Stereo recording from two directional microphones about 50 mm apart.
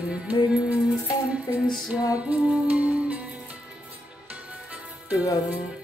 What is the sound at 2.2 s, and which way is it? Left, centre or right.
Music, right.